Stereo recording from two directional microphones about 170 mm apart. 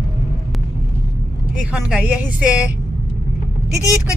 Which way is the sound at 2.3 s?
5° right (ahead or behind).